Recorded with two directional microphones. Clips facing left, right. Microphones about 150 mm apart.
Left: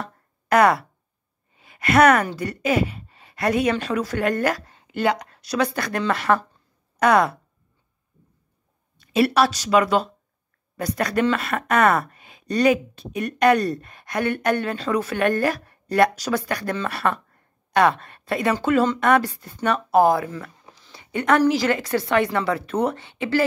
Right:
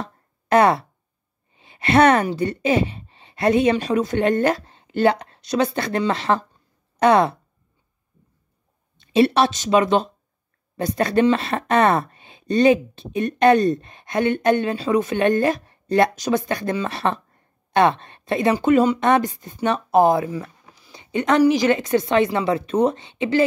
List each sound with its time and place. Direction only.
0.0 s a sound: 25° right (ahead or behind)
1.5 s speech: 25° right (ahead or behind)
8.9 s speech: 25° right (ahead or behind)